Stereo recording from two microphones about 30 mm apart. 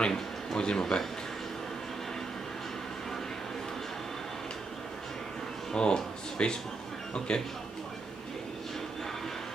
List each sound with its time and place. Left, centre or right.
0.1 s speech: left
5.7 s a man's voice: left